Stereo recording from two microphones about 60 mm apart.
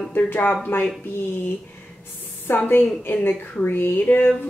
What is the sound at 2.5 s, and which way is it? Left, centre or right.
Speech, left.